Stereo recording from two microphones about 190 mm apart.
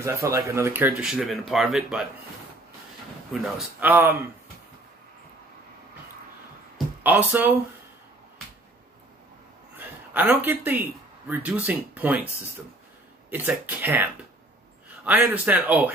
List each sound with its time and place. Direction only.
0.0 s speech: 15° right (ahead or behind)
3.3 s speech: centre (ahead or behind)
7.0 s speech: 10° right (ahead or behind)
9.8 s speech: 10° right (ahead or behind)
13.3 s speech: 10° right (ahead or behind)